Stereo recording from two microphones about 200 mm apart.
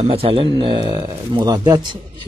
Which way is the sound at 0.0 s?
25° right (ahead or behind).